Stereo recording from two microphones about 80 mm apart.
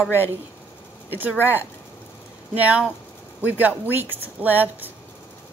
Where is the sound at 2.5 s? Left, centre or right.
Centre.